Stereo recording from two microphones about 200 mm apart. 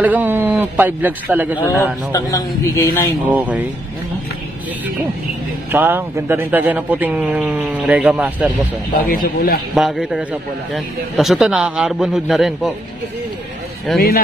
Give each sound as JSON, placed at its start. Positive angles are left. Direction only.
{"t": 0.0, "sound": "a man's voice", "side_deg": -10}
{"t": 2.1, "sound": "a man's voice", "side_deg": 15}
{"t": 3.3, "sound": "a man's voice", "side_deg": -5}
{"t": 5.7, "sound": "a man's voice", "side_deg": -10}
{"t": 8.9, "sound": "speech", "side_deg": 45}
{"t": 9.8, "sound": "a man's voice", "side_deg": 0}
{"t": 13.9, "sound": "speech", "side_deg": 50}